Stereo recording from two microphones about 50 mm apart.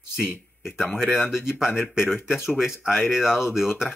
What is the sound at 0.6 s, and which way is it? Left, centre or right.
Speech, centre.